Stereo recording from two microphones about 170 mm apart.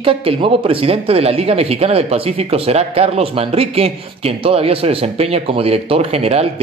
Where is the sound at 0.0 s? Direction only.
30° right (ahead or behind).